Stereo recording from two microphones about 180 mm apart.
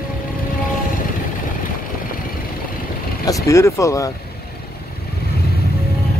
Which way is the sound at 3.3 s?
15° left (ahead or behind).